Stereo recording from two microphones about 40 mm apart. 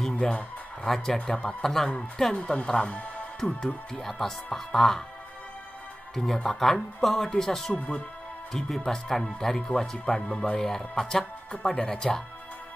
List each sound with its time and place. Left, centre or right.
0.0 s a sound: centre
0.8 s speech: centre
2.3 s speech: left
2.8 s speech: left
3.3 s speech: centre
6.1 s speech: centre; by 10.6 s left
10.6 s speech: centre